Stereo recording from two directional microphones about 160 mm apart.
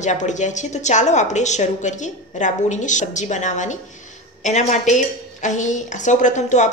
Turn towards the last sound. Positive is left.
turn(degrees=50)  # may be behind; listen again after turning